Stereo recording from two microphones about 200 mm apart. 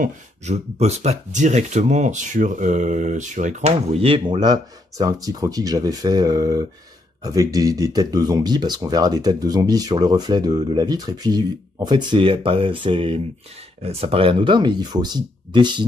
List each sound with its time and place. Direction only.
0.0 s speech: 35° right (ahead or behind)